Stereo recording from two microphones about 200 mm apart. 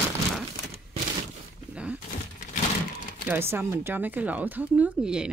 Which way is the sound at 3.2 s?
10° right (ahead or behind).